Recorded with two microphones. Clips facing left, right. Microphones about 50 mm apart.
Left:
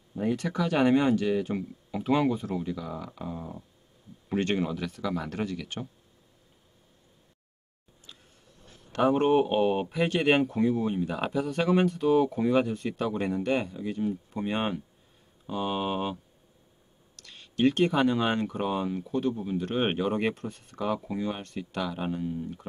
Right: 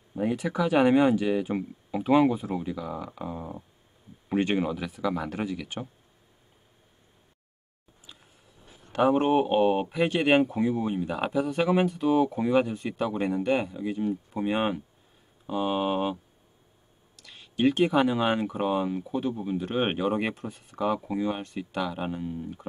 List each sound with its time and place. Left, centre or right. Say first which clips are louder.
0.2 s speech: right 2 dB; centre
8.1 s speech: even; centre